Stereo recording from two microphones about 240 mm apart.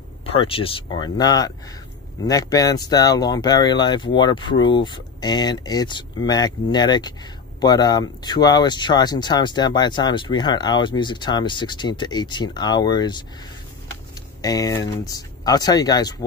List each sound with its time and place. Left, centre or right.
0.2 s speech: left
14.4 s speech: centre